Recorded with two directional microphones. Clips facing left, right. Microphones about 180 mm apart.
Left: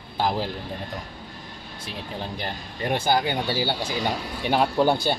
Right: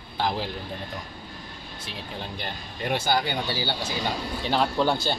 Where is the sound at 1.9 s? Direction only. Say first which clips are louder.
Left 3 dB; 40° left (ahead or behind).